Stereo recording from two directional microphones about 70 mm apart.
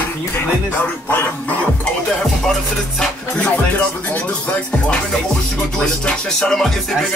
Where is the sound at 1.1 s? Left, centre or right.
Left.